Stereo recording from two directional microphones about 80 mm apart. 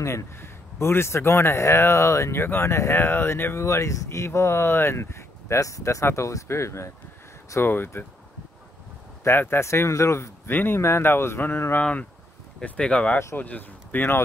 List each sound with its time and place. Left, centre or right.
0.0 s speech: left
9.2 s speech: left